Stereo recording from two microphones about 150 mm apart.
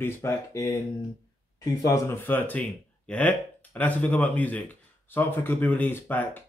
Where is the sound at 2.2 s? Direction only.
10° left (ahead or behind).